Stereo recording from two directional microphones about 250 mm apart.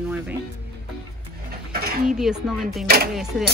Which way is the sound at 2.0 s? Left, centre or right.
Centre.